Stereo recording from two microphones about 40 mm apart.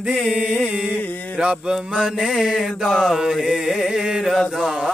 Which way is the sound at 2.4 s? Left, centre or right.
Centre.